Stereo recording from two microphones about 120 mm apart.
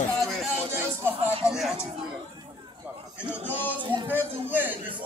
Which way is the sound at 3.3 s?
15° left (ahead or behind).